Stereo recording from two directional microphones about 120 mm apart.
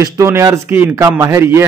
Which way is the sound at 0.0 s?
25° right (ahead or behind).